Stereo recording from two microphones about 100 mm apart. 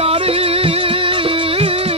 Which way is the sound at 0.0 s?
70° right (ahead or behind).